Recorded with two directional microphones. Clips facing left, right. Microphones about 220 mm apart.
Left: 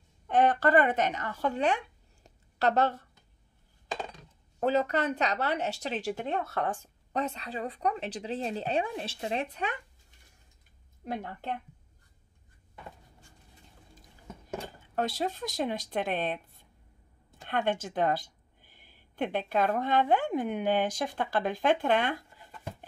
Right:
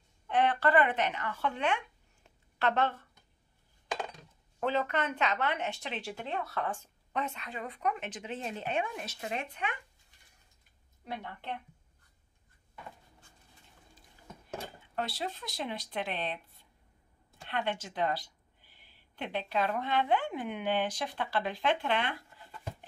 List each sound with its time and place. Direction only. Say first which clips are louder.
0.3 s speech: left 3 dB; 45° left (ahead or behind)
2.2 s a sound: left 3 dB; 40° left (ahead or behind)
4.6 s speech: left 4 dB; 40° left (ahead or behind)
11.1 s speech: left 5 dB; 45° left (ahead or behind)
15.0 s speech: left 6 dB; 45° left (ahead or behind)